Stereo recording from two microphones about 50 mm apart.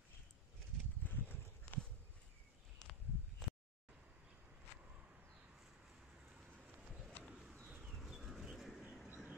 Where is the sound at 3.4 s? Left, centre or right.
Centre.